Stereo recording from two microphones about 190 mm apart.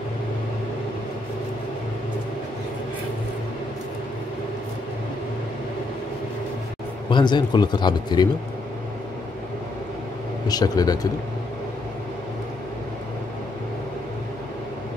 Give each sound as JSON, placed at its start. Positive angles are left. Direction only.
{"t": 7.1, "sound": "speech", "side_deg": 25}
{"t": 10.5, "sound": "speech", "side_deg": 20}